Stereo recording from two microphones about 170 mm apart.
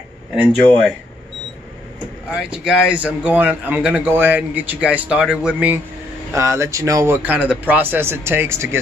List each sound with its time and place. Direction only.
0.7 s speech: 5° left (ahead or behind)
2.3 s a man's voice: 5° right (ahead or behind)